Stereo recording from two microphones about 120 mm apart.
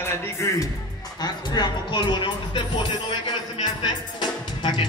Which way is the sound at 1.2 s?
35° left (ahead or behind).